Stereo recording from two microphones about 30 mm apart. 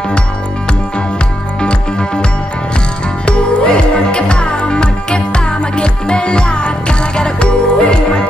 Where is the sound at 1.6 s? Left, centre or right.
Left.